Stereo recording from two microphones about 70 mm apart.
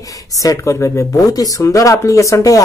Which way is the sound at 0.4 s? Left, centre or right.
Left.